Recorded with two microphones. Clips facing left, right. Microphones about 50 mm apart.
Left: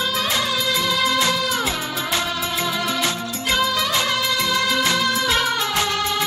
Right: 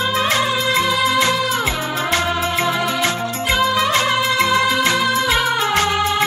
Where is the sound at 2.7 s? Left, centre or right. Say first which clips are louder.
Right 4 dB; centre.